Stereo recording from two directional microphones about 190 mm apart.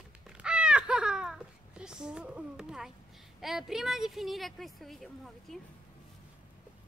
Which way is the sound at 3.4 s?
Centre (ahead or behind).